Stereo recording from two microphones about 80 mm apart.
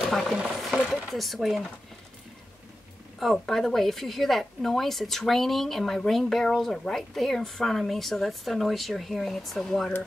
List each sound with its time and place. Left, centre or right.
0.1 s speech: centre
0.6 s a sound: centre
0.9 s speech: centre
3.2 s speech: centre